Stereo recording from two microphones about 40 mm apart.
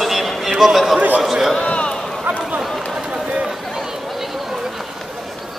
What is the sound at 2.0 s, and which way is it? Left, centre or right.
Run, centre.